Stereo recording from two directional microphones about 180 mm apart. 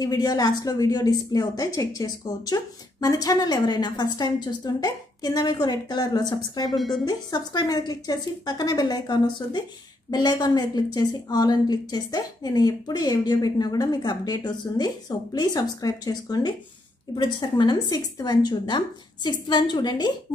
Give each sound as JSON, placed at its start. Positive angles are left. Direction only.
{"t": 0.0, "sound": "a woman's voice", "side_deg": 20}
{"t": 6.7, "sound": "a woman's voice", "side_deg": 0}
{"t": 7.1, "sound": "a woman's voice", "side_deg": 20}